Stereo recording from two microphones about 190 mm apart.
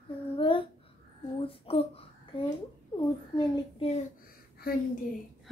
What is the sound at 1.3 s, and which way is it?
Child singing, 30° left (ahead or behind).